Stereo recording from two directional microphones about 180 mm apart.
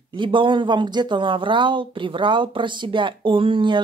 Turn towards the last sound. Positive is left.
turn(degrees=-30)  # may be behind; listen again after turning